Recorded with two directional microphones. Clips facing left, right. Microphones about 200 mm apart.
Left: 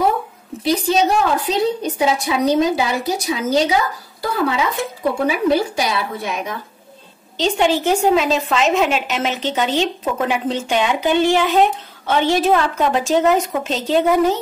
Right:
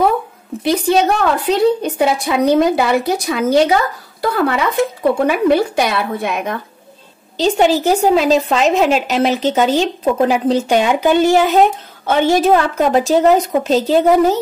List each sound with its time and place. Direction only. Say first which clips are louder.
0.7 s a woman's voice: right 3 dB; 55° right (ahead or behind)
7.3 s a woman's voice: right 4 dB; 40° right (ahead or behind)